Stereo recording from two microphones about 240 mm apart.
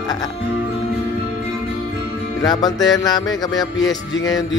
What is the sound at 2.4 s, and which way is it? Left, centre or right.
Music, centre.